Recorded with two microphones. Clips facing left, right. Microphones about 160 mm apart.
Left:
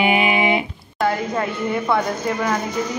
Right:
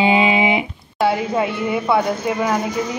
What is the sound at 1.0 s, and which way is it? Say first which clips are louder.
Speech: right 3 dB; 10° right (ahead or behind).